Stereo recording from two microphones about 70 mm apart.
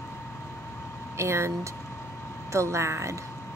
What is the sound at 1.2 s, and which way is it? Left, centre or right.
Speech, right.